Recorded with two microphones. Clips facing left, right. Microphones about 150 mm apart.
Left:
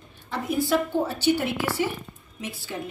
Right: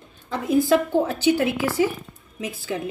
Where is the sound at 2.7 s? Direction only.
90° right.